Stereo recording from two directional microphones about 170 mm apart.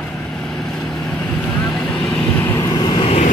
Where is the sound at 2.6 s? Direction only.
25° left (ahead or behind).